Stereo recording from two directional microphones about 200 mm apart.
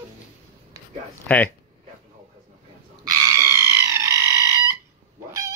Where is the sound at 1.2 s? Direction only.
10° left (ahead or behind).